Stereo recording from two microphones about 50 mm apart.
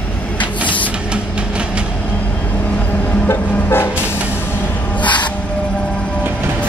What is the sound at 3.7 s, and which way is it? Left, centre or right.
Vehicle, left.